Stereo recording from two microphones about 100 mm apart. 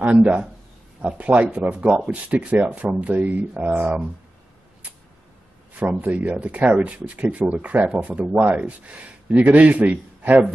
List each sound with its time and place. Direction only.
0.0 s a man's voice: 15° right (ahead or behind)
5.8 s speech: 15° right (ahead or behind)